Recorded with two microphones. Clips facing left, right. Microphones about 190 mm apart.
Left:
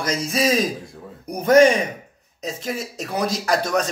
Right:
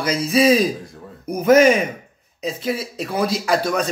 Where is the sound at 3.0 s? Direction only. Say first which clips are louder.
Even; centre (ahead or behind).